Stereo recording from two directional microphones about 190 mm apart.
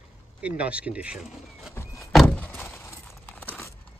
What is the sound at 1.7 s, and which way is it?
Vehicle, 15° left (ahead or behind).